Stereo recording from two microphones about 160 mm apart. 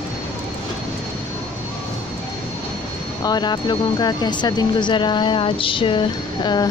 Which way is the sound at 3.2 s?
25° left (ahead or behind).